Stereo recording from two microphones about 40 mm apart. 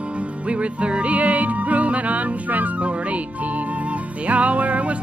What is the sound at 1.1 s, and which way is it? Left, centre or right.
Music, right.